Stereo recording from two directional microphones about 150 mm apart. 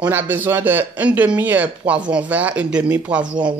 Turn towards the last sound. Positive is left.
turn(degrees=-10)  # may be behind; listen again after turning